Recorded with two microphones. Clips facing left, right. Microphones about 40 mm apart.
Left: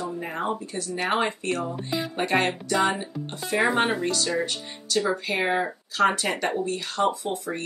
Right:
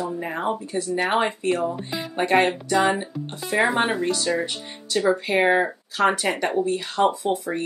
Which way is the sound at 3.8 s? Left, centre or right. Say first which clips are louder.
Right 2 dB; right.